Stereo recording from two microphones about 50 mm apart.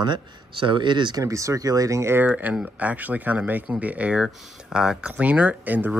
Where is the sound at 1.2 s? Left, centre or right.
Right.